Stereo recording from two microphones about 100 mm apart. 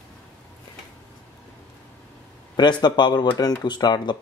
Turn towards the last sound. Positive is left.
turn(degrees=45)  # may be behind; listen again after turning